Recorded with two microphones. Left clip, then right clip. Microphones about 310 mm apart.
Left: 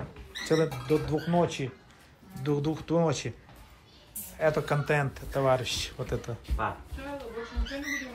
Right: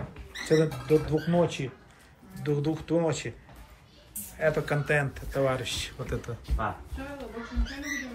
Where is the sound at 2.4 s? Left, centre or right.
Centre.